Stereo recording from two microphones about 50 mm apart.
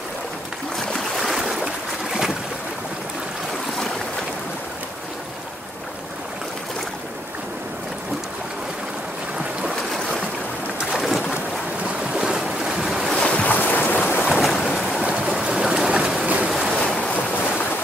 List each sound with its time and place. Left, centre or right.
0.7 s a sound: centre
9.9 s boat: centre
12.1 s boat: centre
12.6 s waves: centre
13.2 s boat: left
13.6 s boat: left
14.3 s boat: centre
15.0 s stream: centre
16.4 s waves: centre
16.8 s waves: centre
17.1 s boat: left